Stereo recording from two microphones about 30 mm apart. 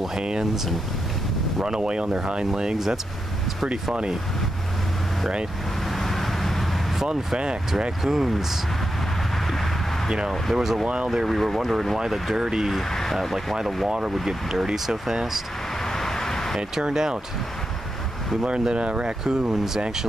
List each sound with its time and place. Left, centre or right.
0.2 s speech: right
1.6 s speech: right
5.9 s vehicle: centre
8.0 s speech: centre
10.5 s speech: centre
11.2 s speech: centre
12.4 s speech: right
13.1 s speech: centre
13.8 s speech: right
15.8 s vehicle: centre
16.9 s speech: right
18.7 s speech: right
19.2 s speech: right